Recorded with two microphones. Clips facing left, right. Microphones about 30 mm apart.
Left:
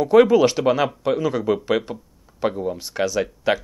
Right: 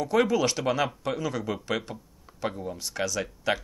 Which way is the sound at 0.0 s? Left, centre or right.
Left.